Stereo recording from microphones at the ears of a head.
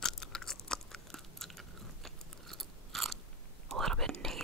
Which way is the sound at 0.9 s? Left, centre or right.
Centre.